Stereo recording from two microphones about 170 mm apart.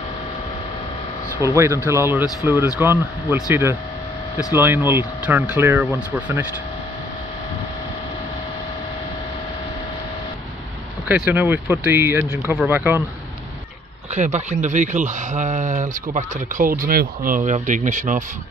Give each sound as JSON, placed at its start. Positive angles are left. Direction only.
{"t": 1.5, "sound": "speech", "side_deg": -15}
{"t": 11.1, "sound": "speech", "side_deg": -10}
{"t": 14.1, "sound": "speech", "side_deg": -45}
{"t": 17.5, "sound": "speech", "side_deg": -50}